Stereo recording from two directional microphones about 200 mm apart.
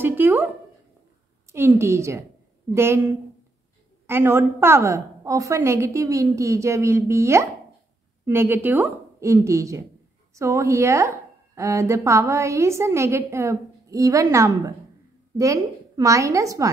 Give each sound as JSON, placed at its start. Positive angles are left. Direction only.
{"t": 0.0, "sound": "speech", "side_deg": -10}
{"t": 1.5, "sound": "speech", "side_deg": -15}
{"t": 4.1, "sound": "speech", "side_deg": -15}